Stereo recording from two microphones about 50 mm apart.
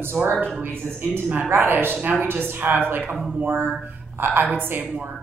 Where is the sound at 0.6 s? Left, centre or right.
Right.